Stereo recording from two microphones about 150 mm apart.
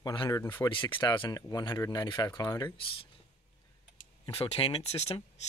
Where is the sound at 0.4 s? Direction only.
15° left (ahead or behind).